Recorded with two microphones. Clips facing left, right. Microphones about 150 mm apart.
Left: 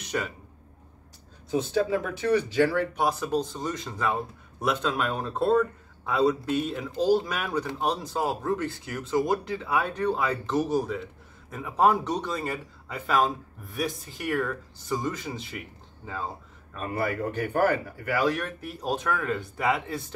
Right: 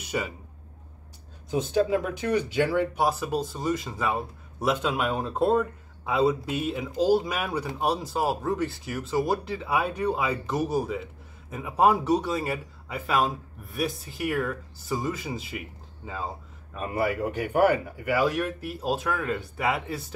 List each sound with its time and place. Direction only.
0.0 s a man's voice: 5° right (ahead or behind)
1.5 s speech: 20° right (ahead or behind)
2.9 s speech: 5° right (ahead or behind)
16.7 s speech: 10° right (ahead or behind)